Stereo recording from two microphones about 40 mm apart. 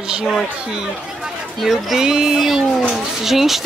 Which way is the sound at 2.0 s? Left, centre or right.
Centre.